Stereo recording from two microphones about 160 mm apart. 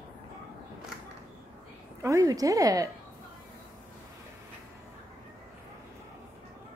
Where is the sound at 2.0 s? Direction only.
20° right (ahead or behind).